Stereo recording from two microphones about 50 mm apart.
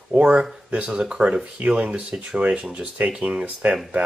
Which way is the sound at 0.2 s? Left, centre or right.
Centre.